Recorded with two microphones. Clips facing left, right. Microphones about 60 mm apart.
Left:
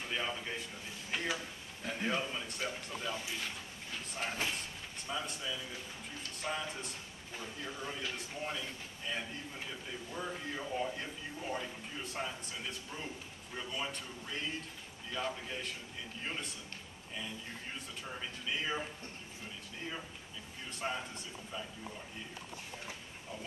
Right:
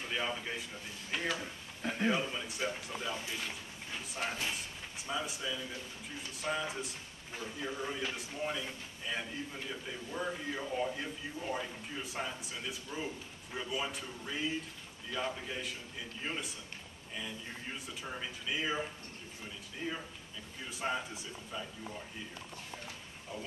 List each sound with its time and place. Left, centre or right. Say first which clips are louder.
0.0 s a man's voice: right 1 dB; centre
1.4 s speech: right 4 dB; right
2.0 s a man's voice: right 3 dB; centre
5.0 s a man's voice: right 2 dB; centre